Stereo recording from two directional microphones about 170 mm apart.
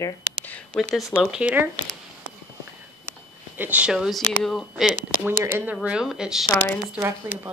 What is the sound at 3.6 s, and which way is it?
Speech, 10° right (ahead or behind).